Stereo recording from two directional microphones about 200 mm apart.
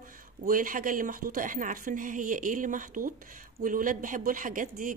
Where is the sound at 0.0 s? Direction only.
45° right (ahead or behind).